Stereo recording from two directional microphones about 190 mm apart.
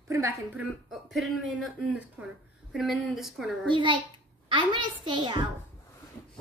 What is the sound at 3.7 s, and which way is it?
A child's voice, 25° right (ahead or behind).